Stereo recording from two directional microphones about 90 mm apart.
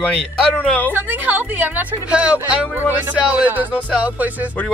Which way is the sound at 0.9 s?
20° right (ahead or behind).